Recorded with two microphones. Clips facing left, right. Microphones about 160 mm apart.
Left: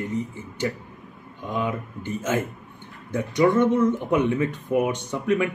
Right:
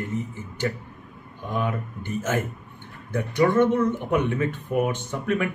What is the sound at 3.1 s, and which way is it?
Speech, 20° left (ahead or behind).